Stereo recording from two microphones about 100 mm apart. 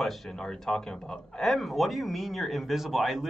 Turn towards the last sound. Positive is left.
turn(degrees=0)  # may be behind; listen again after turning